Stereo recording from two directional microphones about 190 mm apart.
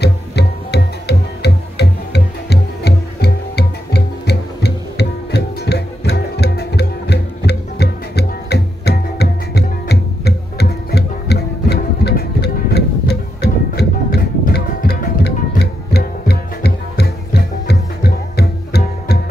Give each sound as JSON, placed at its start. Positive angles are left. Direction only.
{"t": 0.0, "sound": "music", "side_deg": 60}